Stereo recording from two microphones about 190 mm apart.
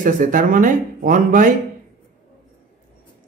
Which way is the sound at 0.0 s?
45° right (ahead or behind).